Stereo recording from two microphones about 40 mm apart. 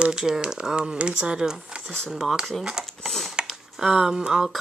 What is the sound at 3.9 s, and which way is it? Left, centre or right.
Speech, centre.